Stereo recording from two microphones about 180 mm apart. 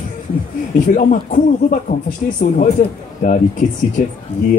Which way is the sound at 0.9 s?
45° left (ahead or behind).